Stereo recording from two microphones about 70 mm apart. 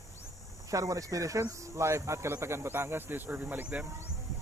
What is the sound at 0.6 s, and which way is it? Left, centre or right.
Speech, right.